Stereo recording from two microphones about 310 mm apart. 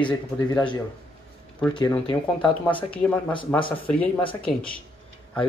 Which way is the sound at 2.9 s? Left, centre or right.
Centre.